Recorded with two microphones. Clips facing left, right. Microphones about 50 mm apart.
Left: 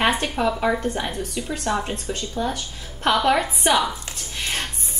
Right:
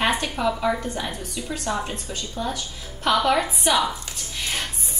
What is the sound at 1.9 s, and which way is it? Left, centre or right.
Speech, left.